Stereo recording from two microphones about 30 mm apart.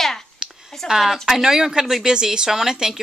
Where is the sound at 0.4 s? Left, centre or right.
Right.